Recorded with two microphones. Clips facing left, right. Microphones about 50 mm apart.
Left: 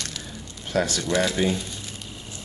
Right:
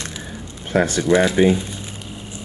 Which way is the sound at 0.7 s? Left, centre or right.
Right.